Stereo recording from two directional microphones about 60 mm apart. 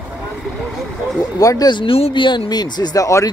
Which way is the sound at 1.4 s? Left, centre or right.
Left.